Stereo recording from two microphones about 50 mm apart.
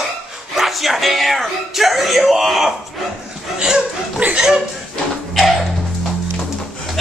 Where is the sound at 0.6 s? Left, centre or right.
Centre.